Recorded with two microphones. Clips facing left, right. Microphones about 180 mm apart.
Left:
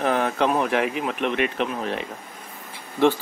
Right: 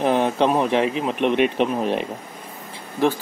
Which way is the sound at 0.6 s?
Centre (ahead or behind).